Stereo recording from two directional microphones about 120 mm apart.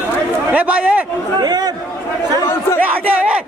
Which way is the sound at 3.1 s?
10° right (ahead or behind).